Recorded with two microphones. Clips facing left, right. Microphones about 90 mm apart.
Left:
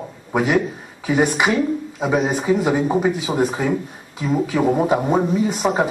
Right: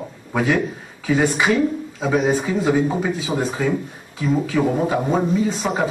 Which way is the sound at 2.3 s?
15° left (ahead or behind).